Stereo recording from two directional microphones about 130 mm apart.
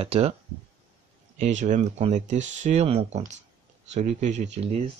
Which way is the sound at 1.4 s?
65° right (ahead or behind).